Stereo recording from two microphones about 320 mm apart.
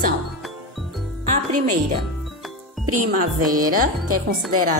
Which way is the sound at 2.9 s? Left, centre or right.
Right.